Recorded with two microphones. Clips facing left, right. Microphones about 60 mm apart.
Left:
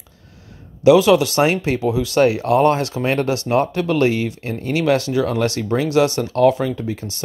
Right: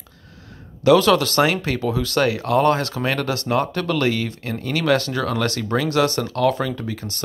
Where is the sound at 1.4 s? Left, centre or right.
Left.